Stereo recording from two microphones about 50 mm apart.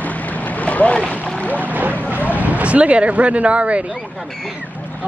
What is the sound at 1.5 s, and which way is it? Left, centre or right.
Boat, right.